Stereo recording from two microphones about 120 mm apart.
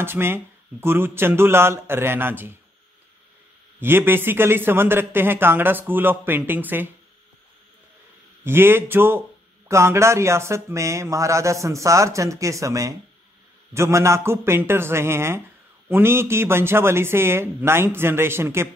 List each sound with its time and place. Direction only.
0.0 s speech: 20° right (ahead or behind)
3.8 s a man's voice: 20° right (ahead or behind)
8.5 s speech: 20° right (ahead or behind)